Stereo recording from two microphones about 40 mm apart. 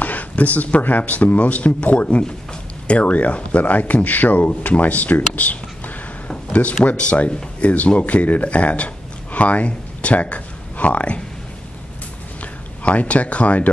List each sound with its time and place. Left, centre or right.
0.0 s speech: left
6.2 s a sound: left
7.0 s speech: left
12.8 s speech: left